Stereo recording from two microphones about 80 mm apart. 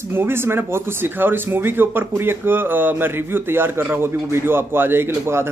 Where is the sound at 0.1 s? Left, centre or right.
Right.